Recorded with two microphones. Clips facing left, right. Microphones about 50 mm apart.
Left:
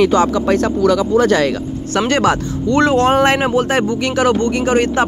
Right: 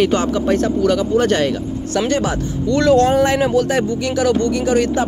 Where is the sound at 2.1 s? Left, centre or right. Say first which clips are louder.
Left 7 dB; left.